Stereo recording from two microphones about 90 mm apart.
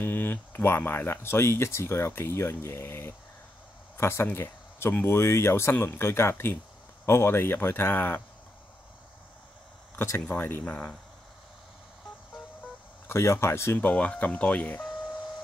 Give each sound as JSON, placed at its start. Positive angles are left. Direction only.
{"t": 0.0, "sound": "speech", "side_deg": 25}
{"t": 9.9, "sound": "speech", "side_deg": 25}
{"t": 13.0, "sound": "speech", "side_deg": 30}
{"t": 14.8, "sound": "a sound", "side_deg": -5}